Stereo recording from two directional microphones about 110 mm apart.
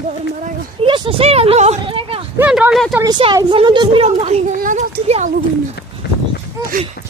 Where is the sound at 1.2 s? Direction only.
65° right (ahead or behind).